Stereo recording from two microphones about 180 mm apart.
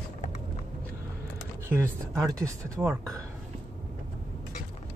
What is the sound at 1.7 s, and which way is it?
Speech, 15° right (ahead or behind).